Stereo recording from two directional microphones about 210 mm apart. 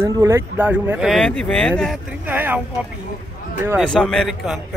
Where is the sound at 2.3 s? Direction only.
10° right (ahead or behind).